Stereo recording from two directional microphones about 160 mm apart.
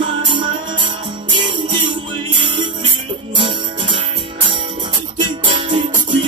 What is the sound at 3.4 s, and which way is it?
Music, 30° right (ahead or behind).